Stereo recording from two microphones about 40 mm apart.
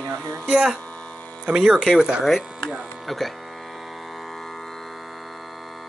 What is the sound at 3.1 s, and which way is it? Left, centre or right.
Speech, centre.